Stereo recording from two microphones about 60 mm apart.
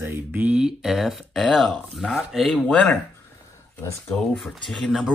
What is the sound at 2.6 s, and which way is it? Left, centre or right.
Speech, left.